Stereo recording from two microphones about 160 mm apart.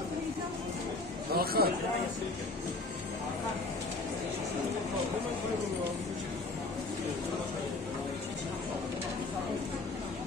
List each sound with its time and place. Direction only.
1.3 s chatter: 70° right (ahead or behind)